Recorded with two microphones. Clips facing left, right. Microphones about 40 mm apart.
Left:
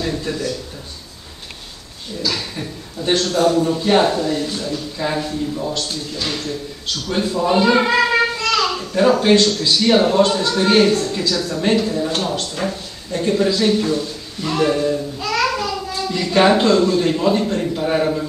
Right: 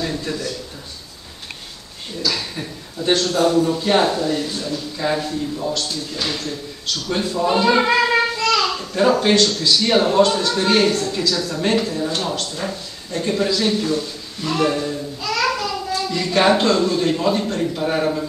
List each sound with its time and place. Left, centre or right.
0.0 s a man's voice: centre
2.2 s a man's voice: centre
7.3 s a child's voice: centre
15.1 s a sound: centre
15.5 s a child's voice: centre